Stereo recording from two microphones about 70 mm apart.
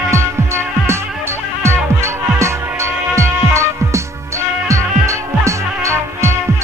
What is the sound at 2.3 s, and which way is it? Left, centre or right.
Music, right.